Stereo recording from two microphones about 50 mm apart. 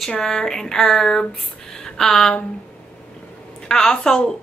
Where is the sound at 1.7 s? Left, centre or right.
Centre.